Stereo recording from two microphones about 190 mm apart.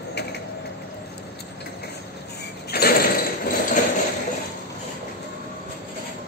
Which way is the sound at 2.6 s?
55° left (ahead or behind).